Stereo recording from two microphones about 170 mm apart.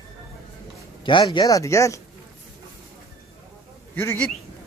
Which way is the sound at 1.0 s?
30° left (ahead or behind).